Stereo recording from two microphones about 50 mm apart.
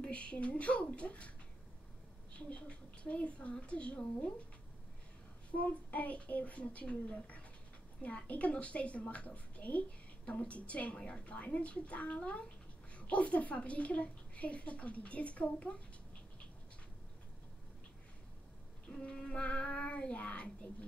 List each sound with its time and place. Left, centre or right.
0.0 s a woman's voice: left
2.3 s a woman's voice: left
5.6 s a woman's voice: left
18.9 s a sound: centre
19.4 s a woman's voice: left